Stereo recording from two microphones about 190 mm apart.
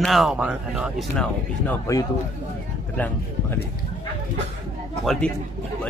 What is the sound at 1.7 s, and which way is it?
Speech, 15° left (ahead or behind).